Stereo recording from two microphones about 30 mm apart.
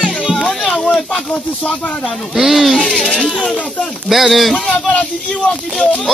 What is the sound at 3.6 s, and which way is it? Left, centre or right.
Speech, left.